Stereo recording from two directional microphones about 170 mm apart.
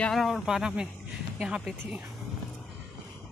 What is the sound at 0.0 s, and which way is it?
Speech, centre (ahead or behind).